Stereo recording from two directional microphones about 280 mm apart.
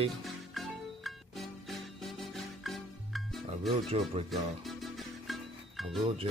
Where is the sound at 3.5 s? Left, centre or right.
Right.